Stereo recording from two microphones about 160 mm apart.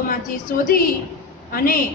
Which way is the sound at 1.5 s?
65° left (ahead or behind).